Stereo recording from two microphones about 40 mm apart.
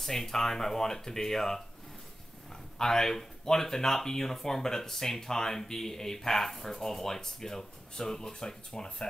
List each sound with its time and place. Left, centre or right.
0.0 s speech: centre
2.8 s speech: centre